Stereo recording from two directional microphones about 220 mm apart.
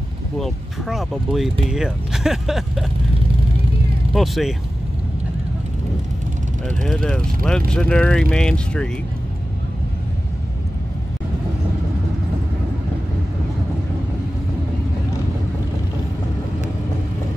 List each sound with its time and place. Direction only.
0.4 s speech: centre (ahead or behind)
4.1 s speech: centre (ahead or behind)
6.8 s speech: 5° left (ahead or behind)